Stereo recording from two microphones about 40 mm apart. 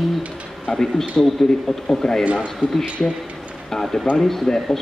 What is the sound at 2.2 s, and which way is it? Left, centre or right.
Speech, right.